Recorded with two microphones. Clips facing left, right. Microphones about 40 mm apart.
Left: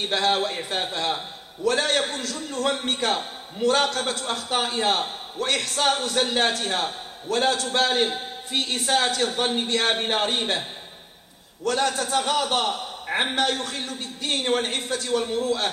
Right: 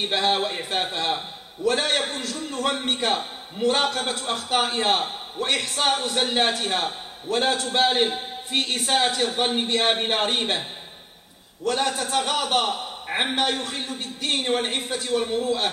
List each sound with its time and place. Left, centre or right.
0.1 s a man's voice: centre
8.5 s speech: right
8.8 s a man's voice: centre
11.6 s a man's voice: centre